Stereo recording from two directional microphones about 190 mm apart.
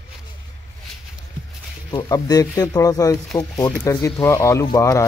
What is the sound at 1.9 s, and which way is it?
Speech, 20° left (ahead or behind).